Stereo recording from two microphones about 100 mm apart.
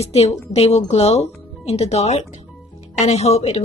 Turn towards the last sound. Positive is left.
turn(degrees=90)